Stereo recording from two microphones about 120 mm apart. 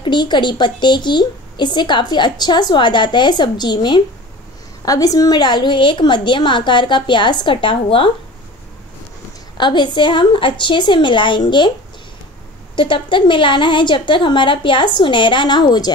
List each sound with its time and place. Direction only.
0.0 s a woman's voice: 40° left (ahead or behind)
9.6 s a woman's voice: 40° left (ahead or behind)
12.7 s a woman's voice: 40° left (ahead or behind)